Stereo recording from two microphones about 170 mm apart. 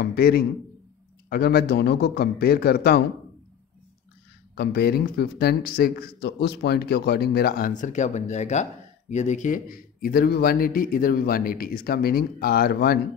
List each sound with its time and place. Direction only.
0.0 s a man's voice: 65° left (ahead or behind)
4.6 s speech: 70° left (ahead or behind)